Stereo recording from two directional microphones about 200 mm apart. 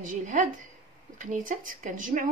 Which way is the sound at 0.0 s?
40° right (ahead or behind).